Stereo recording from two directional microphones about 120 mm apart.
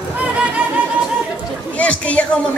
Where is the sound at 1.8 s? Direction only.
10° left (ahead or behind).